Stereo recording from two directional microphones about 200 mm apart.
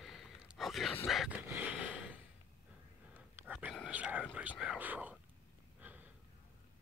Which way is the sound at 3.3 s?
5° right (ahead or behind).